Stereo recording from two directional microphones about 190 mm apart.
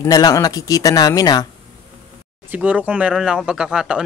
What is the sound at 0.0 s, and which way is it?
Speech, 20° left (ahead or behind).